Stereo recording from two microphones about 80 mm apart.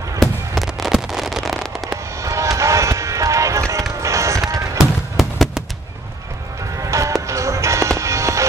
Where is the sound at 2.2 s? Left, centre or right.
Right.